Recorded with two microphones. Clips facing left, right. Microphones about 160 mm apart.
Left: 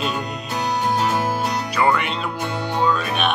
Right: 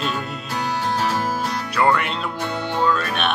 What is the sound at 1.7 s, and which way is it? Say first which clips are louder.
Speech: right 1 dB; centre (ahead or behind).